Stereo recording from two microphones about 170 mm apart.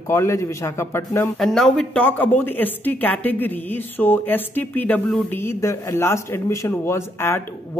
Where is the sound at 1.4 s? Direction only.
5° left (ahead or behind).